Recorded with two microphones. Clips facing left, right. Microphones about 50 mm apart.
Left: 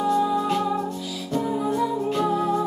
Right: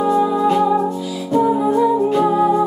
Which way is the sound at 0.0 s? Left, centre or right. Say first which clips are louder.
Right 6 dB; centre.